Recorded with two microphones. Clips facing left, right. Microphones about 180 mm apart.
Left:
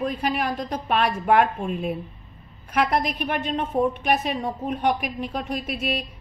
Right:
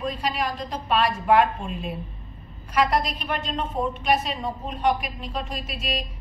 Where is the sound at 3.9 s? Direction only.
55° left (ahead or behind).